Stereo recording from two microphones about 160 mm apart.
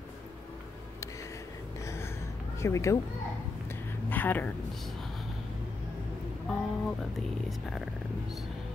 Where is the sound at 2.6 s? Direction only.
20° left (ahead or behind).